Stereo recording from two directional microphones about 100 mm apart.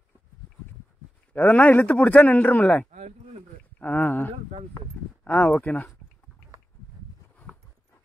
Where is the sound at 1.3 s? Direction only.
15° left (ahead or behind).